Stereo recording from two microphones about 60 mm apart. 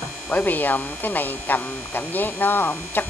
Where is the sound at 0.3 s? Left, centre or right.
Left.